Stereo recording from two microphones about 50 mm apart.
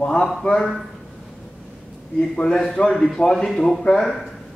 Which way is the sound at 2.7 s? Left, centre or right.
Centre.